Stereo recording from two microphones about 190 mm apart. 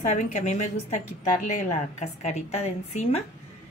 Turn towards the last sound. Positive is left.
turn(degrees=35)  # may be behind; listen again after turning